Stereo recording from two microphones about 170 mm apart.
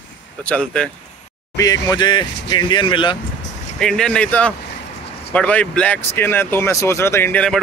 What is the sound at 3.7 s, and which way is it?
Speech, 5° left (ahead or behind).